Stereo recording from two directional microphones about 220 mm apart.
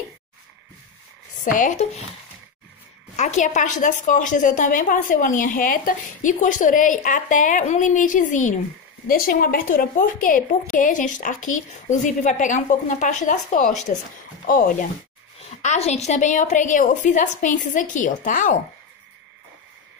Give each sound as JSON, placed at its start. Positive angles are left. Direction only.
{"t": 1.4, "sound": "a woman's voice", "side_deg": 35}
{"t": 3.2, "sound": "a woman's voice", "side_deg": 30}